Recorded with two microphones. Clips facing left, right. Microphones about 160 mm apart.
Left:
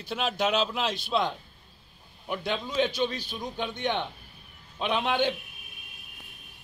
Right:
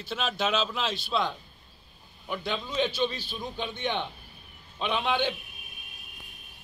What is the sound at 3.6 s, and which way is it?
Speech, 55° left (ahead or behind).